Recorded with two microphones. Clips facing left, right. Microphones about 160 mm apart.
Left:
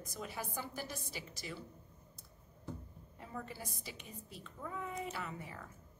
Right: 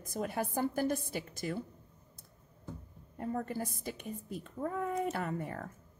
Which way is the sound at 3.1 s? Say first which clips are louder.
Right 10 dB; 50° right (ahead or behind).